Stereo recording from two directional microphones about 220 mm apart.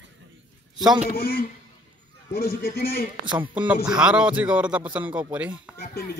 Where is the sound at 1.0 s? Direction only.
45° left (ahead or behind).